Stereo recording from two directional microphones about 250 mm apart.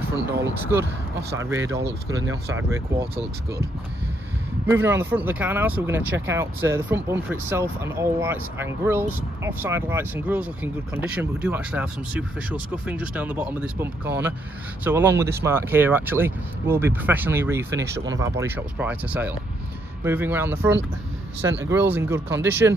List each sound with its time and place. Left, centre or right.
0.1 s speech: centre
4.6 s speech: centre
21.4 s speech: right
21.9 s speech: centre